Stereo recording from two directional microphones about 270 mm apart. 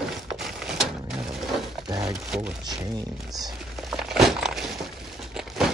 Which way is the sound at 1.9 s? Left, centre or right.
Centre.